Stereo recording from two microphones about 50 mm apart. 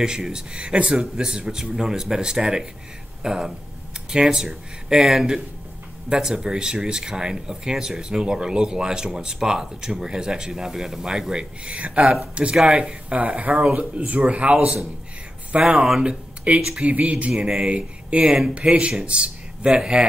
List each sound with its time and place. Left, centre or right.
0.0 s speech: centre
11.7 s speech: right
17.5 s speech: centre